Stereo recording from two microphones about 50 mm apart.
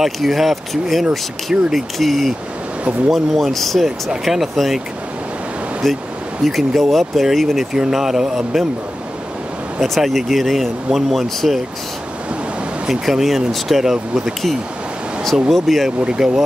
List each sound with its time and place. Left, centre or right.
0.0 s speech: centre
1.5 s speech: centre
2.0 s speech: centre
5.8 s speech: centre
9.8 s speech: centre
12.8 s speech: centre
15.5 s speech: centre
16.0 s speech: centre